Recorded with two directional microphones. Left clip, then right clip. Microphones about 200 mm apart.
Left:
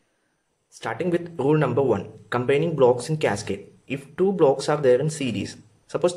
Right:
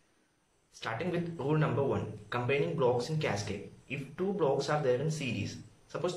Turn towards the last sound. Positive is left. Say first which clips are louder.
# left 13 dB
turn(degrees=45)  # may be behind; listen again after turning